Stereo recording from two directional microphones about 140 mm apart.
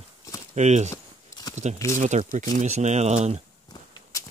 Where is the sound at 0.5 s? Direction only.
55° right (ahead or behind).